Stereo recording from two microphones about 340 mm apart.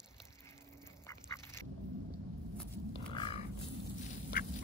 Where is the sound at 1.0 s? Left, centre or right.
Centre.